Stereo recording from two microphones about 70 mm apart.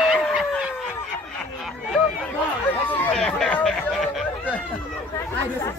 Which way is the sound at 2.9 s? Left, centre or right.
Left.